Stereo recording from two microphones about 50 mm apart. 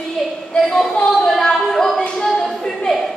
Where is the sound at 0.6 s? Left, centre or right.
Centre.